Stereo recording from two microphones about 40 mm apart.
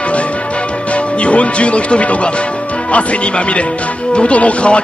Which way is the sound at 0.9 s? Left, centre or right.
Left.